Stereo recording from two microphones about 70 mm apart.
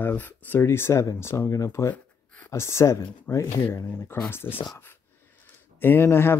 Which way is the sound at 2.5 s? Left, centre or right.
Left.